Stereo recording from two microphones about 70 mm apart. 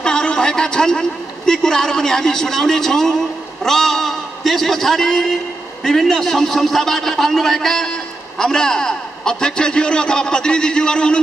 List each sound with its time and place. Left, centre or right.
0.0 s a man's voice: centre